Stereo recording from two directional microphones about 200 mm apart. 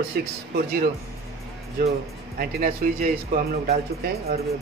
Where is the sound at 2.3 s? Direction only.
45° right (ahead or behind).